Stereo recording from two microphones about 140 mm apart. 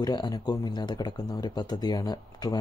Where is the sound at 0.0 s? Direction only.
30° left (ahead or behind).